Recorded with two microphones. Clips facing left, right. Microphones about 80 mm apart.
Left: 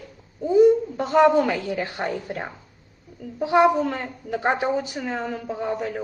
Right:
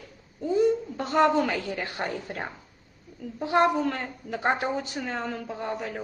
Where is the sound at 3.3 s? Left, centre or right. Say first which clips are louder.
Left 5 dB; centre.